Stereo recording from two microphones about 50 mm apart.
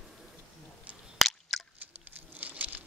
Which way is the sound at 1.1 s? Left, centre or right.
Centre.